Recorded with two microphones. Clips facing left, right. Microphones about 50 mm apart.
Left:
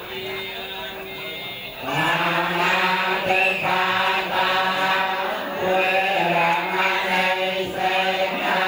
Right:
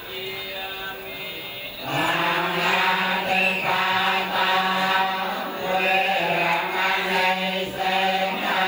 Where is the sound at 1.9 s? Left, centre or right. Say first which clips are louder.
Left 1 dB; left.